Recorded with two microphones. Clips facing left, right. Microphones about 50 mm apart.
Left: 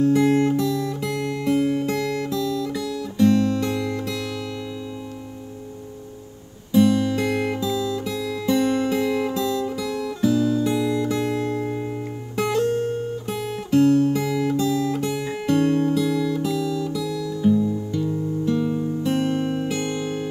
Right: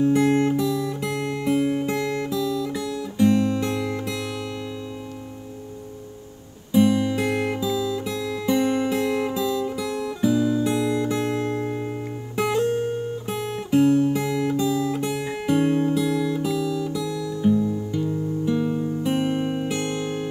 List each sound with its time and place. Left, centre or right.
0.3 s guitar: centre
6.7 s guitar: centre
11.0 s music: centre
12.4 s guitar: centre
18.4 s music: centre